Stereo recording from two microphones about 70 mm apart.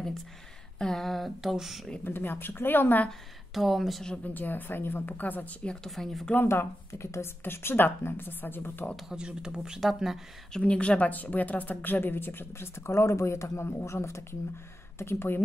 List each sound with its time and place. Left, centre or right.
0.7 s speech: centre
2.0 s speech: left
3.1 s speech: centre
4.2 s speech: left
5.9 s speech: centre
6.3 s a woman's voice: left
9.1 s speech: centre
10.5 s a woman's voice: centre; by 15.4 s left